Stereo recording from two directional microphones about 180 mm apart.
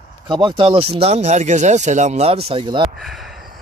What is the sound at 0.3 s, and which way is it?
Speech, 25° right (ahead or behind).